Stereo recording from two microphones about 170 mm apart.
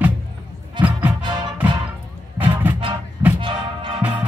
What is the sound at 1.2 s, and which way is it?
Music, 25° right (ahead or behind).